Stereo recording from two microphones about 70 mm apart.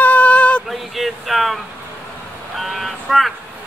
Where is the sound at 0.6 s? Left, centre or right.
Centre.